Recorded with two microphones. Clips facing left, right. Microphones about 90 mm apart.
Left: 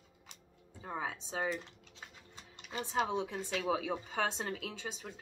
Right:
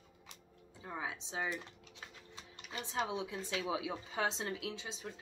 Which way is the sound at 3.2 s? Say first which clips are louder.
Left 3 dB; 60° left (ahead or behind).